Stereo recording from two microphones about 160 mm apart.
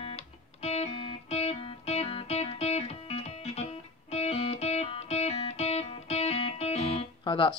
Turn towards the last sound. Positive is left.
turn(degrees=30)  # may be behind; listen again after turning